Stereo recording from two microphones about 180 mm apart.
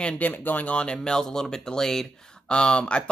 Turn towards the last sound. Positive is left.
turn(degrees=5)  # may be behind; listen again after turning